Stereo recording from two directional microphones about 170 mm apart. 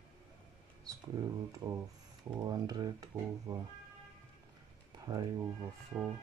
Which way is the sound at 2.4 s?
25° right (ahead or behind).